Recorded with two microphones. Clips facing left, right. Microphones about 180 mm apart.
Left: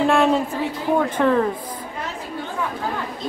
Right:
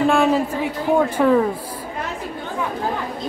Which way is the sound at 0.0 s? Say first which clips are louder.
Right 1 dB; centre (ahead or behind).